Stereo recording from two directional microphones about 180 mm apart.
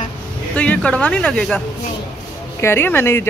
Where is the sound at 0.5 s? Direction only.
5° left (ahead or behind).